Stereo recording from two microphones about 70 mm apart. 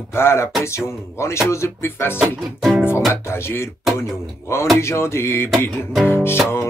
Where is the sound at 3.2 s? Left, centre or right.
Left.